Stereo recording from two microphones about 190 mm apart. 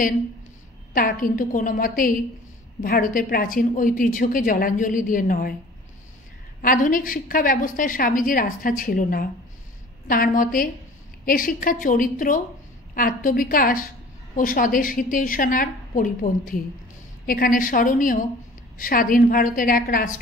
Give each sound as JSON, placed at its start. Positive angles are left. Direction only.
{"t": 0.9, "sound": "a woman's voice", "side_deg": 45}
{"t": 6.6, "sound": "a woman's voice", "side_deg": 45}